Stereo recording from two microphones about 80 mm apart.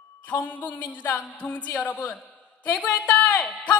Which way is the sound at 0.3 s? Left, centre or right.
Left.